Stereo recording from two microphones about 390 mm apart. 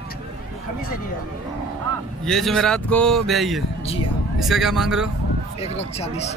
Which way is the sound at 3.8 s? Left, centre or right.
Centre.